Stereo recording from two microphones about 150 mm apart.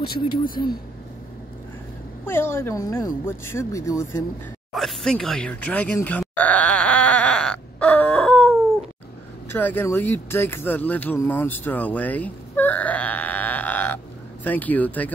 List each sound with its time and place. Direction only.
2.2 s a woman's voice: 15° left (ahead or behind)
4.7 s a sound: centre (ahead or behind)
9.5 s a woman's voice: 15° left (ahead or behind)